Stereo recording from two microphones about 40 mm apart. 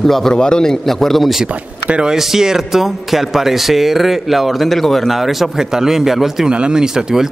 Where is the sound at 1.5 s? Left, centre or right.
Right.